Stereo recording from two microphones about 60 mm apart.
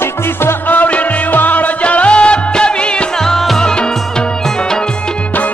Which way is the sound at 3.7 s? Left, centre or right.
Centre.